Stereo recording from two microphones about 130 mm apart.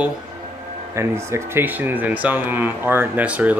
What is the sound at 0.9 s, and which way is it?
Speech, 20° right (ahead or behind).